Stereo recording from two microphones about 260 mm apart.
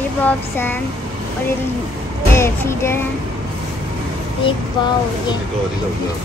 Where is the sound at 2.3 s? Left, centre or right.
Centre.